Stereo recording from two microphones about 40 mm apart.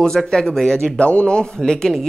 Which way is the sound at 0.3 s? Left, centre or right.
Centre.